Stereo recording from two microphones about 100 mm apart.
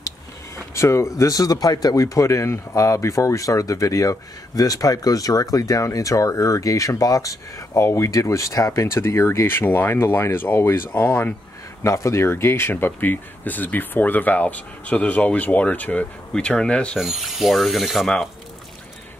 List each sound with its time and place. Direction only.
0.7 s speech: 30° left (ahead or behind)
11.8 s speech: 30° left (ahead or behind); by 17.0 s 10° left (ahead or behind)
17.0 s mechanisms: centre (ahead or behind)